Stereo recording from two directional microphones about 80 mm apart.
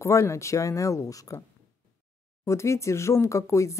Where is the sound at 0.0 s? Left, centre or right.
Left.